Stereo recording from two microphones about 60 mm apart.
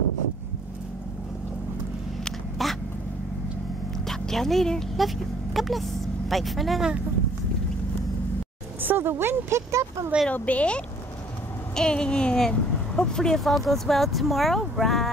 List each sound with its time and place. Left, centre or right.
2.2 s a sound: centre
4.1 s speech: centre
8.8 s speech: right
10.3 s speech: left
11.7 s speech: centre